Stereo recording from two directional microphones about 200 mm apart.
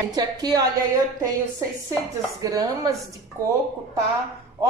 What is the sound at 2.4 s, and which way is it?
Speech, 20° right (ahead or behind).